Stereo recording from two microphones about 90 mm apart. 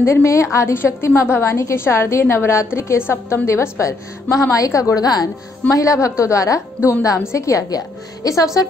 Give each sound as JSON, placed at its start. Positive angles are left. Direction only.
{"t": 0.0, "sound": "a woman's voice", "side_deg": 30}